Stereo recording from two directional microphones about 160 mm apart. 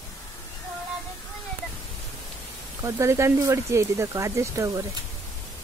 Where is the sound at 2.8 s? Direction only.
20° right (ahead or behind).